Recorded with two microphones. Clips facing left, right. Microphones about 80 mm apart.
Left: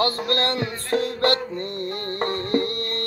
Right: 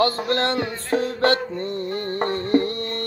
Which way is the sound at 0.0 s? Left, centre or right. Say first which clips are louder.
Right 2 dB; right.